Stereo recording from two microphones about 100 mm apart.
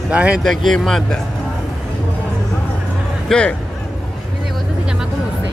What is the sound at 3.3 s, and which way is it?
Speech, 10° left (ahead or behind).